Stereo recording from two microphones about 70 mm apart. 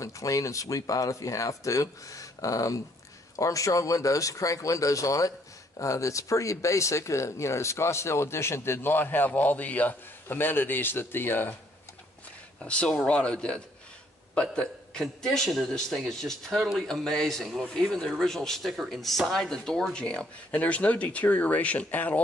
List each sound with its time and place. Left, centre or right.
0.0 s speech: left
12.6 s a man's voice: centre